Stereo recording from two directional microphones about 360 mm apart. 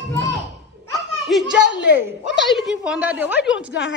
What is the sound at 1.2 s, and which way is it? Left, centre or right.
A woman's voice, centre.